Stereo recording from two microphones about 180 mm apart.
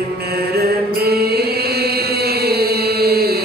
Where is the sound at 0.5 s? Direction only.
60° right (ahead or behind).